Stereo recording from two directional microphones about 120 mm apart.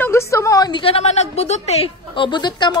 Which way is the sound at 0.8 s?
55° left (ahead or behind).